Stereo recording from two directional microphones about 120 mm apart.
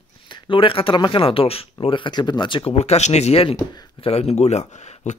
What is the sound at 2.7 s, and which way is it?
Speech, 65° left (ahead or behind).